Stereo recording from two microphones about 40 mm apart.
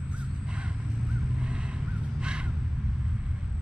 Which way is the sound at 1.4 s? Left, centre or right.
Right.